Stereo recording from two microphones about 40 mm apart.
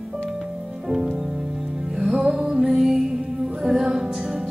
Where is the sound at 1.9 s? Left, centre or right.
Centre.